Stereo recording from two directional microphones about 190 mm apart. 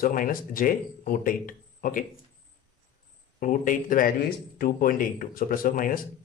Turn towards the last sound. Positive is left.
turn(degrees=50)  # may be behind; listen again after turning